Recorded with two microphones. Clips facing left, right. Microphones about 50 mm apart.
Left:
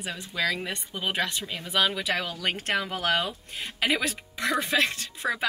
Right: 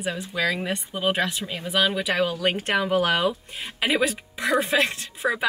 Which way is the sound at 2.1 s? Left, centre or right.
Right.